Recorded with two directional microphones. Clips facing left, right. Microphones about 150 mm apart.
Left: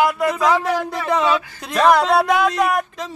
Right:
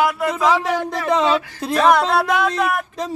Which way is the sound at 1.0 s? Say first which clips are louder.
Right 1 dB; 20° right (ahead or behind).